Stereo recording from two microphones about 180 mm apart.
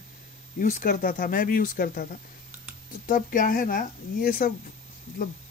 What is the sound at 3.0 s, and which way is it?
Speech, 50° left (ahead or behind).